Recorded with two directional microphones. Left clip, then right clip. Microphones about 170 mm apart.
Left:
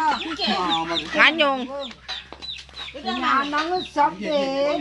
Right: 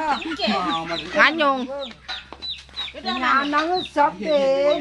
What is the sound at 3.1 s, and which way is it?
Speech, 20° right (ahead or behind).